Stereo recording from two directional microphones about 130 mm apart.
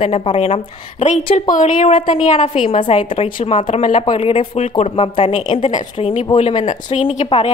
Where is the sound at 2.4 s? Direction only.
55° left (ahead or behind).